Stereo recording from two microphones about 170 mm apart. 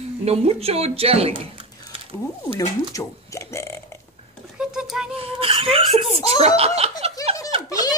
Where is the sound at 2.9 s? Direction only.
15° left (ahead or behind).